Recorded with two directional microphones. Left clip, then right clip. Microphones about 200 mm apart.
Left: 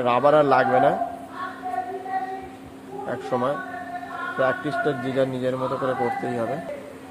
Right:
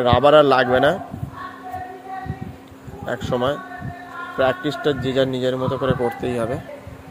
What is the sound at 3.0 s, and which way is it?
A man's voice, 40° right (ahead or behind).